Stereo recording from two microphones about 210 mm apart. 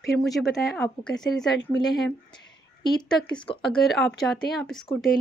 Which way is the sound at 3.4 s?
Centre (ahead or behind).